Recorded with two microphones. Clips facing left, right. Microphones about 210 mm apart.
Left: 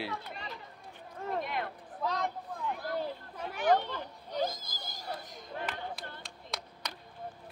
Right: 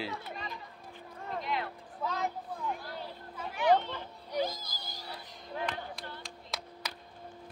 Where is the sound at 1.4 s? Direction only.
50° left (ahead or behind).